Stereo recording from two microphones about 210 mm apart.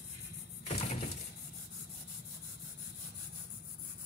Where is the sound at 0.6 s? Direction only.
30° left (ahead or behind).